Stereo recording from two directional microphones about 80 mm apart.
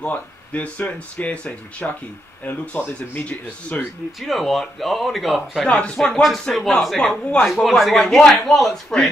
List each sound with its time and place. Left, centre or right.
0.0 s speech: centre
4.2 s speech: centre
5.7 s speech: centre